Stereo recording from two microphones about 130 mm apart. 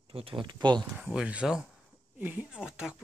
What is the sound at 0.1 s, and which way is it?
Speech, 45° right (ahead or behind).